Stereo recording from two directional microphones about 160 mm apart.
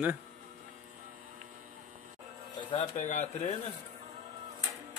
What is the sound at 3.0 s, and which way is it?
Speech, 50° left (ahead or behind).